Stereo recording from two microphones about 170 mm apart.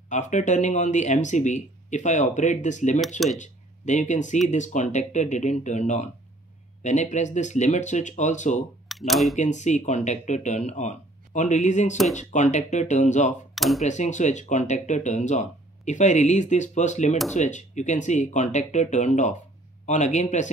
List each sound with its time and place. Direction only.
0.1 s speech: 45° left (ahead or behind)
8.8 s speech: centre (ahead or behind)
9.4 s speech: 45° left (ahead or behind)
13.6 s speech: centre (ahead or behind)
13.8 s speech: 45° left (ahead or behind)